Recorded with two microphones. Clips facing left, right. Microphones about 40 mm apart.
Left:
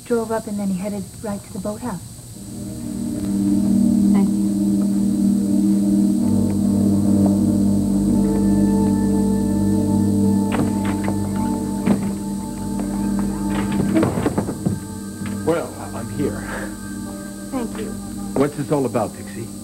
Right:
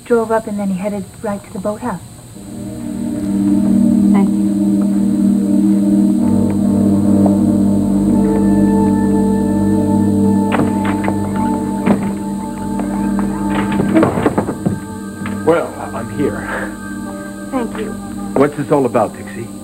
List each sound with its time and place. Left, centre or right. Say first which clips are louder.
0.1 s a woman's voice: right 7 dB; right
3.3 s gong: right 5 dB; right
4.7 s music: right 5 dB; right